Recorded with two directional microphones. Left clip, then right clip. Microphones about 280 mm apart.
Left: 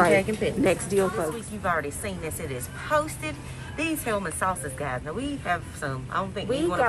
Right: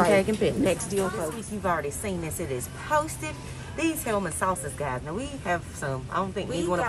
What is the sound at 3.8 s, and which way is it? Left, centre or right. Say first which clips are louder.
Speech: even; right.